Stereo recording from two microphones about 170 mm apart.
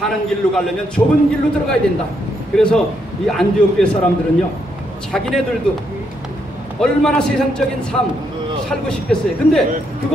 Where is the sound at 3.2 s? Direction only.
5° left (ahead or behind).